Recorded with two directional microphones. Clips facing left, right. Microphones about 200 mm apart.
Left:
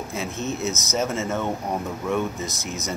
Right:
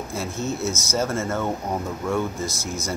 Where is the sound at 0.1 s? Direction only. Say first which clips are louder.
Right 1 dB; 20° left (ahead or behind).